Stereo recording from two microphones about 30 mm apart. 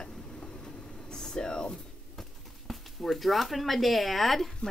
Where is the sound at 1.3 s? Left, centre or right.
Left.